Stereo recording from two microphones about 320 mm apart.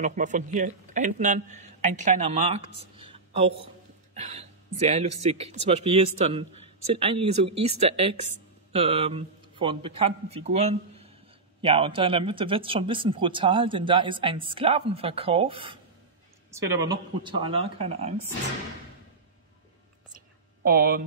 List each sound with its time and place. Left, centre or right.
0.0 s a man's voice: right
3.0 s a sound: centre
4.1 s a man's voice: right
7.4 s speech: right
7.7 s a man's voice: centre
20.6 s a man's voice: right